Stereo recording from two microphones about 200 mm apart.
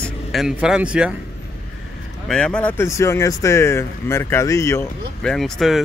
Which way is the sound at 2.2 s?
5° left (ahead or behind).